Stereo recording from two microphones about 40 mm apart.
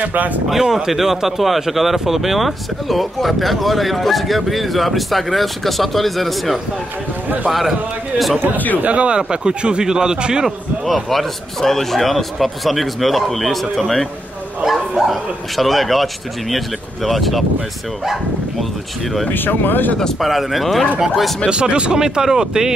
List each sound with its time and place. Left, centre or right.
0.0 s speech: right
0.5 s speech: centre
8.8 s speech: right
11.1 s speech: centre
14.6 s speech: centre
19.3 s speech: left
20.2 s speech: centre
21.5 s speech: right